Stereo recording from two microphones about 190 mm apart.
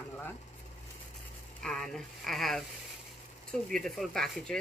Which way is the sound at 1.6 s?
Centre (ahead or behind).